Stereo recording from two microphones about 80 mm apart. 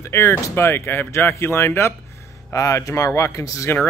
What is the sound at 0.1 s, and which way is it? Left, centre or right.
Speech, left.